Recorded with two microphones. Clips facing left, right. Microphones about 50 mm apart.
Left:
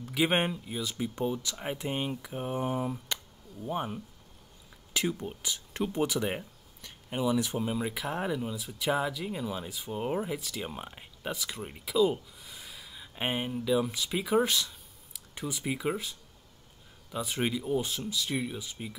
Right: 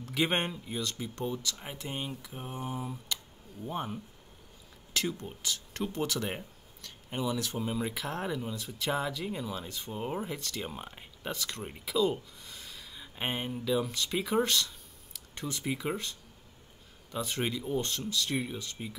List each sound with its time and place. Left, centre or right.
0.0 s speech: centre; by 2.9 s left
3.6 s speech: centre